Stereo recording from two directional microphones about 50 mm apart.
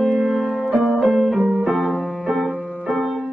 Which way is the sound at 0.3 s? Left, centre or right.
Centre.